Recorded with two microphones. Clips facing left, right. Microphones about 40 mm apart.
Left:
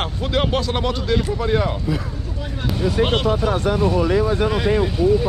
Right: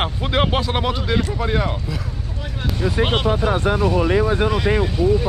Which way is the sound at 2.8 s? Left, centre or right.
Centre.